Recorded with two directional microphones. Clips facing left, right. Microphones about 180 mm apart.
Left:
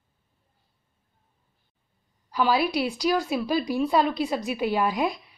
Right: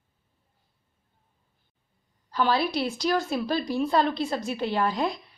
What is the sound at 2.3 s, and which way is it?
A woman's voice, 10° left (ahead or behind).